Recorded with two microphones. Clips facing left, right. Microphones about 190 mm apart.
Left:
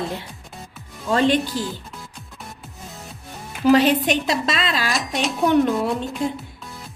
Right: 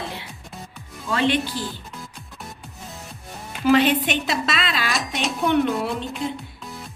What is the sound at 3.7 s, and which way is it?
A woman's voice, 40° left (ahead or behind).